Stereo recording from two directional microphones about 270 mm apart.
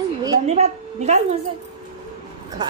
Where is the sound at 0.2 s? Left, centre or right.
Centre.